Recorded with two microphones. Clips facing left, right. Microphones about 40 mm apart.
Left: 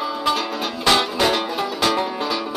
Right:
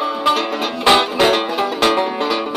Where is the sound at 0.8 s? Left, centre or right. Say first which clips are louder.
Right 5 dB; right.